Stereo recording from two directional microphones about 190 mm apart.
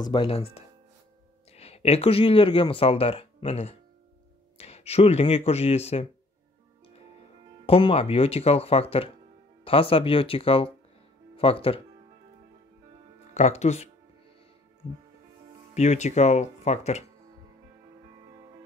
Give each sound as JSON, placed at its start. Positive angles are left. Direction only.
{"t": 0.0, "sound": "speech", "side_deg": 25}
{"t": 7.6, "sound": "speech", "side_deg": 30}
{"t": 13.3, "sound": "speech", "side_deg": 35}
{"t": 15.7, "sound": "speech", "side_deg": 35}